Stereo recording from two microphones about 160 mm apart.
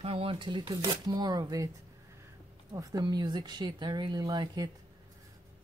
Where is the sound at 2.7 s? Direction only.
20° right (ahead or behind).